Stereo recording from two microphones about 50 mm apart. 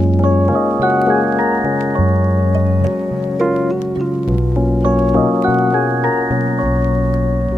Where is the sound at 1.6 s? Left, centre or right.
Right.